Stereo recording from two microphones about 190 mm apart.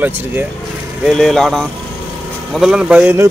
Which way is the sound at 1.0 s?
Centre (ahead or behind).